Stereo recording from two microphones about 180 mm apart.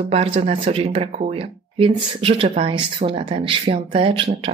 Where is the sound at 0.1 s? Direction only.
35° right (ahead or behind).